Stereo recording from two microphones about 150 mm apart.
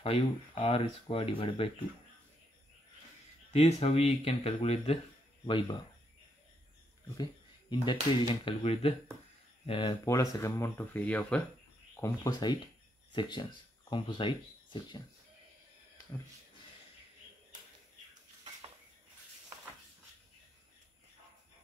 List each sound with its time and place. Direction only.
0.0 s speech: 40° left (ahead or behind)
3.5 s speech: 45° left (ahead or behind)
7.7 s speech: 35° left (ahead or behind)
10.0 s speech: 20° left (ahead or behind)
12.0 s speech: 25° left (ahead or behind)